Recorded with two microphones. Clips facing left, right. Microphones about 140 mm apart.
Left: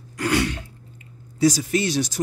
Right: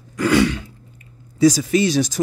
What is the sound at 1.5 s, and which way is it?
Speech, 90° right.